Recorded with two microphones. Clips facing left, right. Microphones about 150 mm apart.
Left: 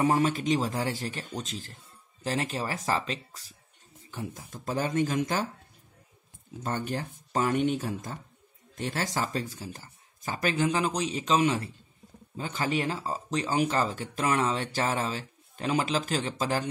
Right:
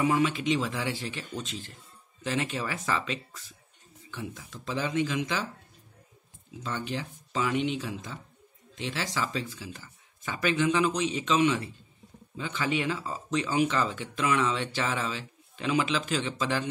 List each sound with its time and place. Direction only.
0.0 s speech: 40° left (ahead or behind)
6.6 s speech: 50° left (ahead or behind)